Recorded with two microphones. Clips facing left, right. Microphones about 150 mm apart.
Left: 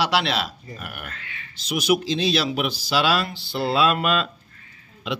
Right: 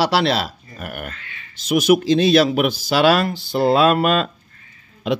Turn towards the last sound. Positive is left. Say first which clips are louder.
# right 7 dB
turn(degrees=-45)  # may be behind; listen again after turning